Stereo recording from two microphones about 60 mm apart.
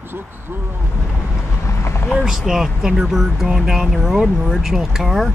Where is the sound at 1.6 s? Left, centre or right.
Left.